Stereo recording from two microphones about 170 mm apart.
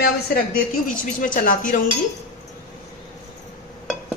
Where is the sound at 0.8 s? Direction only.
50° left (ahead or behind).